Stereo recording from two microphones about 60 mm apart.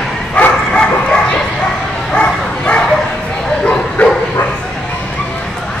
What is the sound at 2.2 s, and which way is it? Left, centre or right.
Bow-wow, centre.